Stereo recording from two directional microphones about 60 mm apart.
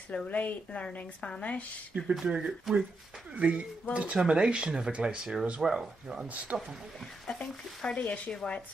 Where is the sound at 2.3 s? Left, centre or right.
Centre.